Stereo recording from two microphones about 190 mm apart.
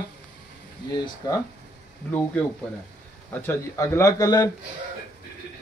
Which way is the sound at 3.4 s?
15° left (ahead or behind).